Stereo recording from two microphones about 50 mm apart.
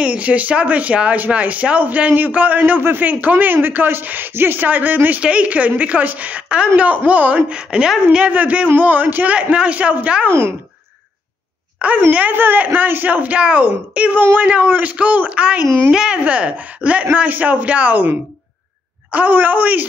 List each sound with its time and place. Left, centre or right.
0.0 s speech: right
5.2 s a man's voice: right
7.5 s a woman's voice: centre
8.3 s a man's voice: right
9.3 s a man's voice: right
11.8 s a man's voice: right
12.3 s a man's voice: right
15.9 s a woman's voice: centre
16.3 s a man's voice: right